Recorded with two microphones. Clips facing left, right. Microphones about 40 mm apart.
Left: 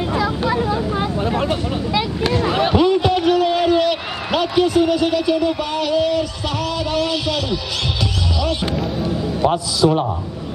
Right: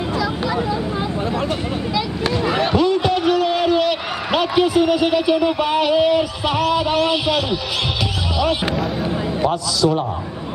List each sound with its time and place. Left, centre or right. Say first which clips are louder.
0.2 s vehicle: left 2 dB; left
2.2 s a man's voice: left 1 dB; centre
9.5 s a man's voice: left 3 dB; left